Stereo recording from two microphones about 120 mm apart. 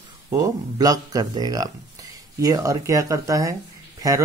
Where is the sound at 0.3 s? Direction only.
30° right (ahead or behind).